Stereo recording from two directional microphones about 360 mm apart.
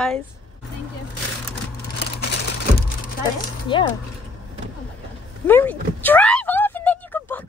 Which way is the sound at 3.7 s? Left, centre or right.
Centre.